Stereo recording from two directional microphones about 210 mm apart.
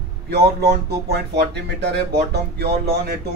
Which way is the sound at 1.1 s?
50° right (ahead or behind).